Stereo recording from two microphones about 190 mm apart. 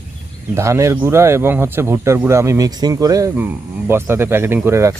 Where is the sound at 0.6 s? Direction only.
15° right (ahead or behind).